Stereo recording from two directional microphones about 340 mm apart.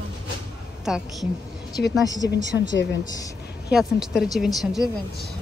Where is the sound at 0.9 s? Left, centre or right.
Centre.